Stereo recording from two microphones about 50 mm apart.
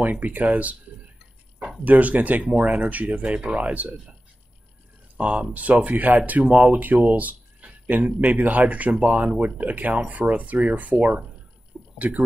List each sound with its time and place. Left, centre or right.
0.0 s speech: right
1.9 s speech: right
5.1 s speech: right
11.7 s a sound: centre